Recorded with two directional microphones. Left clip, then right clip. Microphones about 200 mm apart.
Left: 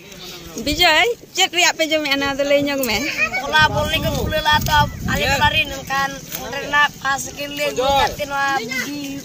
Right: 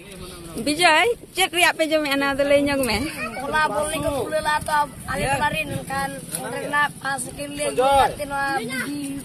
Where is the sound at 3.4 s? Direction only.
10° right (ahead or behind).